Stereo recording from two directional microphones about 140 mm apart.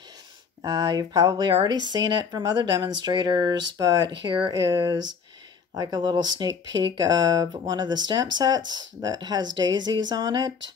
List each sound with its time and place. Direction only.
0.6 s speech: 25° right (ahead or behind)